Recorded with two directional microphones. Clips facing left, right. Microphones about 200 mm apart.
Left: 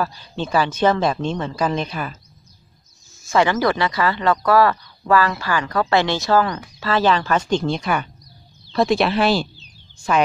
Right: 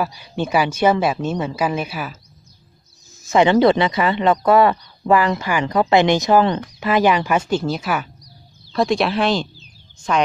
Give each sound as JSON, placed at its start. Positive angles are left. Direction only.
{"t": 0.0, "sound": "speech", "side_deg": -10}
{"t": 3.2, "sound": "speech", "side_deg": -20}